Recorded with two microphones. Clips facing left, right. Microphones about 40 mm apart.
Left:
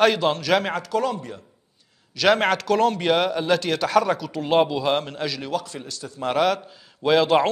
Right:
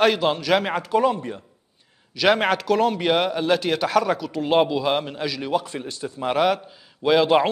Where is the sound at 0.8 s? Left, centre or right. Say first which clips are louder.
Right 4 dB; right.